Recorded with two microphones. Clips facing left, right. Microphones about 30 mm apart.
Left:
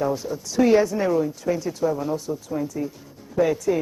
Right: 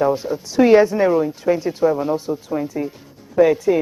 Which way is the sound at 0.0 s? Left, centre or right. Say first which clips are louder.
Right 6 dB; right.